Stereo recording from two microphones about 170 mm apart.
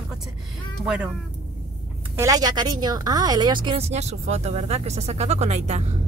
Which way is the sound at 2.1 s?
20° right (ahead or behind).